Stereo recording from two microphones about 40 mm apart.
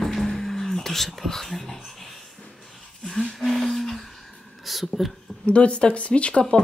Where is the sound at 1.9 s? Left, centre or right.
Centre.